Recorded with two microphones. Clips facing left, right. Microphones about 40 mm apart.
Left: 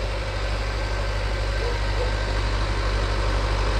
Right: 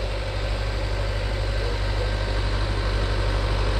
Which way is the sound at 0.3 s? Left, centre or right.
Left.